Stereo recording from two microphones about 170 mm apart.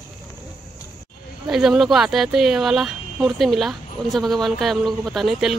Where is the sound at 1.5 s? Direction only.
Centre (ahead or behind).